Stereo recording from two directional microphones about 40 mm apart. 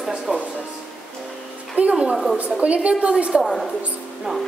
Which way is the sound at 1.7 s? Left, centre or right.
Right.